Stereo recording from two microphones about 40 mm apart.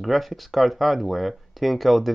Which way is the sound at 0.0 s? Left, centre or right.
Centre.